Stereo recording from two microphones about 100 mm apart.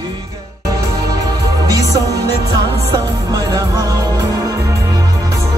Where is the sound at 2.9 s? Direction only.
40° right (ahead or behind).